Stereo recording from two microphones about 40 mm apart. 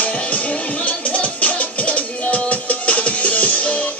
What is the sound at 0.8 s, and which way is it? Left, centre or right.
Music, left.